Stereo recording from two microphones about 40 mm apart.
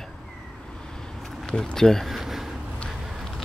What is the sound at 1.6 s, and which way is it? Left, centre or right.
Speech, centre.